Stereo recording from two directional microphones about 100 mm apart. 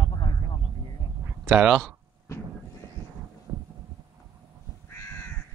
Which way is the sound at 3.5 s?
30° right (ahead or behind).